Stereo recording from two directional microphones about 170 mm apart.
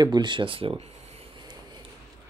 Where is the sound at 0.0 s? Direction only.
25° right (ahead or behind).